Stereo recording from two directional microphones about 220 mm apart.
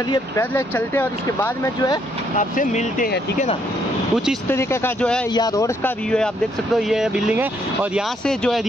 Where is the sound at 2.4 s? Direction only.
35° left (ahead or behind).